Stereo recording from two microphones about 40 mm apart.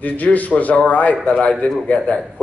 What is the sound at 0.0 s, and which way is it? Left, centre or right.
Speech, left.